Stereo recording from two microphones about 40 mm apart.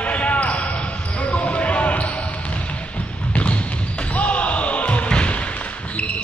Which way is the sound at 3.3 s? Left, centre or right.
Left.